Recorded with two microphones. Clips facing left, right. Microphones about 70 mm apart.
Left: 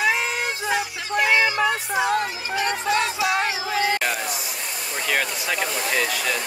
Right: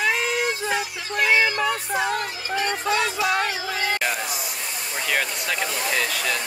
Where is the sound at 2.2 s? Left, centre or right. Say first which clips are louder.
Left 3 dB; centre.